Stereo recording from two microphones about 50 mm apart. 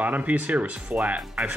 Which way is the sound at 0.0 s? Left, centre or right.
Right.